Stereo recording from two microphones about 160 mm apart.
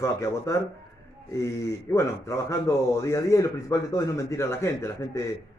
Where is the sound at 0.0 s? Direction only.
20° left (ahead or behind).